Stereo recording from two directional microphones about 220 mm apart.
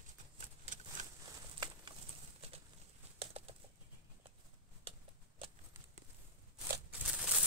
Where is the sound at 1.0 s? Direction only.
35° right (ahead or behind).